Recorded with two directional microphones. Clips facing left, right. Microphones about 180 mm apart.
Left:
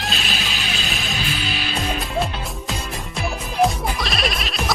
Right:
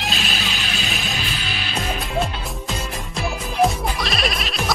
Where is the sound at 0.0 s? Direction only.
Centre (ahead or behind).